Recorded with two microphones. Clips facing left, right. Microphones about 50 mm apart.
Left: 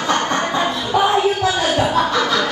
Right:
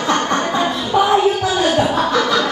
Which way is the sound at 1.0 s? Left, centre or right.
Left.